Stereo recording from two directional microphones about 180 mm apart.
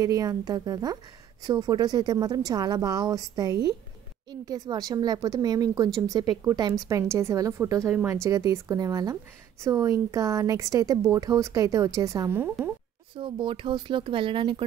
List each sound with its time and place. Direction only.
0.0 s a woman's voice: 20° right (ahead or behind)
13.1 s speech: 25° right (ahead or behind)